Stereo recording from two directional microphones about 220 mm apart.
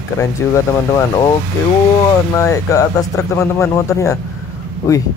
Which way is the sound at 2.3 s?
15° left (ahead or behind).